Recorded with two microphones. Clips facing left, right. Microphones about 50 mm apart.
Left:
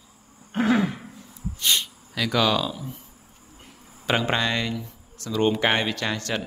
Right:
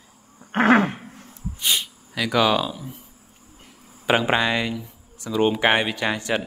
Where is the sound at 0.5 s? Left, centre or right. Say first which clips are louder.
Right 5 dB; right.